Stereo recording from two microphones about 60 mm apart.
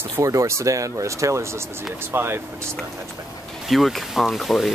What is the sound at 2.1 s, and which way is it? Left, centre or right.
Speech, right.